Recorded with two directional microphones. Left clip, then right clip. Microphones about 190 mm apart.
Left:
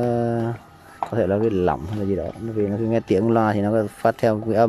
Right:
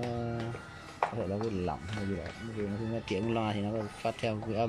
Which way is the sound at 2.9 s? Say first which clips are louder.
Left 14 dB; 35° left (ahead or behind).